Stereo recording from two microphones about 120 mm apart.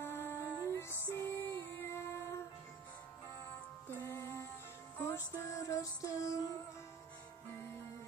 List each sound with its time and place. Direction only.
0.0 s music: 20° left (ahead or behind)
3.9 s music: 20° left (ahead or behind)